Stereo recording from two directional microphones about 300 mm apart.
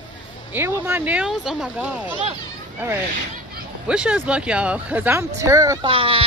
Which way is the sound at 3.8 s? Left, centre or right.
Centre.